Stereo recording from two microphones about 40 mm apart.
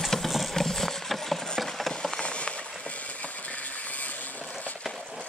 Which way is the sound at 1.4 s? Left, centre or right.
Centre.